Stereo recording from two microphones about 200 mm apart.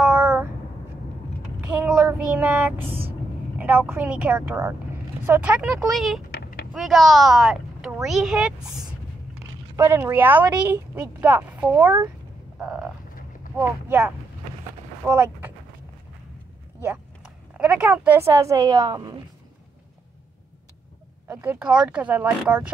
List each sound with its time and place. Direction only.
0.0 s a sound: 10° right (ahead or behind)
1.8 s speech: 10° right (ahead or behind)
6.3 s vehicle: 50° left (ahead or behind)
6.7 s speech: centre (ahead or behind)
9.8 s speech: 15° right (ahead or behind)
12.5 s frog: 5° right (ahead or behind)
13.6 s speech: 10° right (ahead or behind)
16.8 s speech: 5° right (ahead or behind)
21.3 s speech: 5° right (ahead or behind)